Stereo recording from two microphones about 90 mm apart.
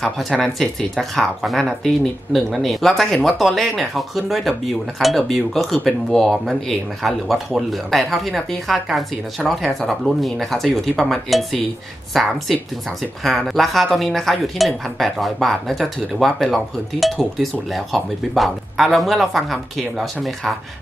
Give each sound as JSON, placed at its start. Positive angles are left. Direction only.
{"t": 0.0, "sound": "speech", "side_deg": 0}